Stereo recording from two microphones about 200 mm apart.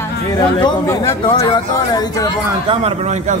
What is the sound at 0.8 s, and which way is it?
Speech, 15° left (ahead or behind).